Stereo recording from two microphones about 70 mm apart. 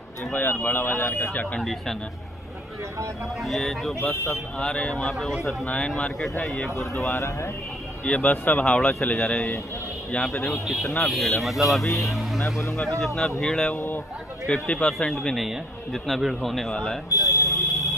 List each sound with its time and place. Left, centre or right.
0.3 s speech: left
1.3 s speech: left
1.6 s a man's voice: centre
3.4 s a man's voice: centre
4.1 s speech: left
4.6 s a man's voice: centre
5.7 s a man's voice: centre
7.1 s speech: left
8.0 s a man's voice: centre
17.1 s vehicle: left